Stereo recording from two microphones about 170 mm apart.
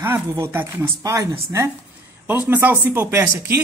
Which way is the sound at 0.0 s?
15° right (ahead or behind).